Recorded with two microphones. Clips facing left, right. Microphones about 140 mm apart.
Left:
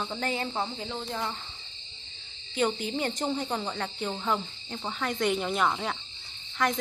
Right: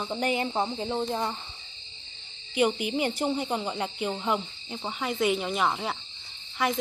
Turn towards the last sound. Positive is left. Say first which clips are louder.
# even
turn(degrees=-10)  # may be behind; listen again after turning